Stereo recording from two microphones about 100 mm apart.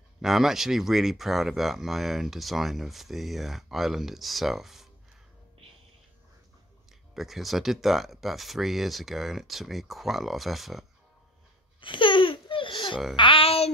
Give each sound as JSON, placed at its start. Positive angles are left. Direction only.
{"t": 0.2, "sound": "speech", "side_deg": -5}
{"t": 7.2, "sound": "speech", "side_deg": 0}
{"t": 11.8, "sound": "babbling", "side_deg": 55}
{"t": 13.1, "sound": "speech", "side_deg": 60}